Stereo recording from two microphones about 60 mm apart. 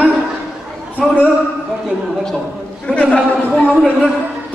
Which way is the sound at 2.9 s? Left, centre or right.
Left.